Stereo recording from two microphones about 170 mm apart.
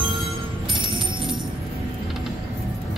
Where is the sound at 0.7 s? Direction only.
30° right (ahead or behind).